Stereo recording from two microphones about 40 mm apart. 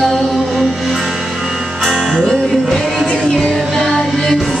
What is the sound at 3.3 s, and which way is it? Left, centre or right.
Music, centre.